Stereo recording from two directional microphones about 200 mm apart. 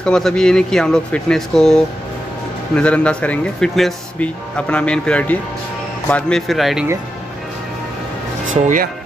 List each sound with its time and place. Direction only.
0.0 s speech: 5° left (ahead or behind)